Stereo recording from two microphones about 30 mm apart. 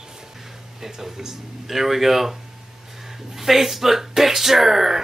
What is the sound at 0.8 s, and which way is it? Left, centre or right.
Speech, centre.